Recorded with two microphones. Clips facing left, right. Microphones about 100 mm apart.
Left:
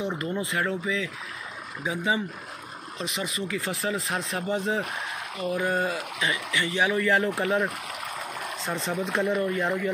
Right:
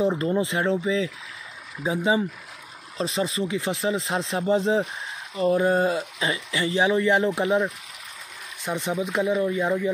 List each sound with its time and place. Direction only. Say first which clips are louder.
0.0 s speech: right 7 dB; 30° right (ahead or behind)
7.6 s a sound: even; 60° left (ahead or behind)
8.6 s speech: right 4 dB; 15° right (ahead or behind)